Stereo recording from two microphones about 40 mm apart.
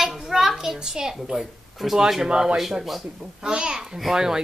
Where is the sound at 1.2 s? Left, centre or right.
Centre.